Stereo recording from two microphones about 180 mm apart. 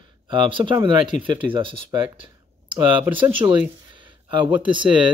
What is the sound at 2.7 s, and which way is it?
Speech, 10° right (ahead or behind).